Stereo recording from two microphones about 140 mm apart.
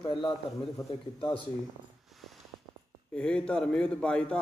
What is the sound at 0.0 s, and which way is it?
Speech, 35° left (ahead or behind).